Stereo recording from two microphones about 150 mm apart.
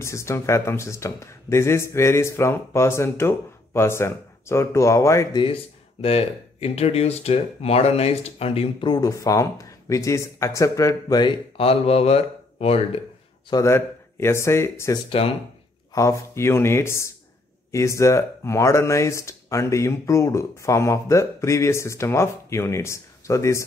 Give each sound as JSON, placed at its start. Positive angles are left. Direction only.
{"t": 0.0, "sound": "speech", "side_deg": 20}
{"t": 5.4, "sound": "speech", "side_deg": 40}
{"t": 13.5, "sound": "speech", "side_deg": 20}
{"t": 15.2, "sound": "speech", "side_deg": 40}
{"t": 15.9, "sound": "speech", "side_deg": 20}